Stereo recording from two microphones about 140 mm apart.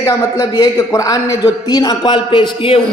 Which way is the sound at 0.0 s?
25° left (ahead or behind).